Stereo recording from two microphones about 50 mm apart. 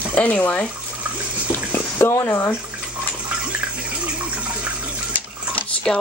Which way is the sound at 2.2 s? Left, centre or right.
Left.